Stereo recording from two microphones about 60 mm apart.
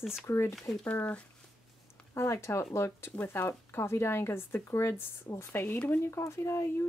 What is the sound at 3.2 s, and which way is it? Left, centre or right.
Speech, left.